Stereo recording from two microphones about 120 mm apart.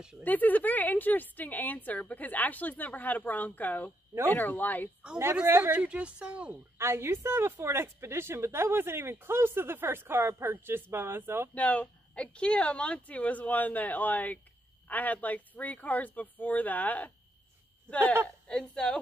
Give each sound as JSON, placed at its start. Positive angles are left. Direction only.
{"t": 0.2, "sound": "a woman's voice", "side_deg": 15}
{"t": 5.2, "sound": "speech", "side_deg": -20}
{"t": 6.8, "sound": "a woman's voice", "side_deg": -20}
{"t": 11.5, "sound": "a woman's voice", "side_deg": 10}